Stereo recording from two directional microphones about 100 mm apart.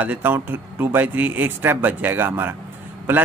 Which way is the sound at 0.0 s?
20° right (ahead or behind).